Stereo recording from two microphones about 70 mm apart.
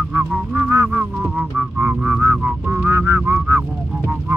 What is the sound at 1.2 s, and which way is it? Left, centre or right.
Music, centre.